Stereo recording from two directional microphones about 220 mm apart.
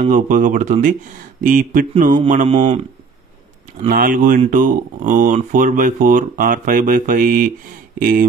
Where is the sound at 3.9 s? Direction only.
40° right (ahead or behind).